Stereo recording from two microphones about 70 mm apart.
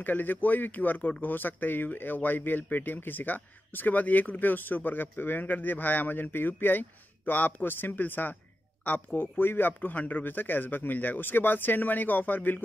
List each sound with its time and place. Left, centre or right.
0.0 s speech: left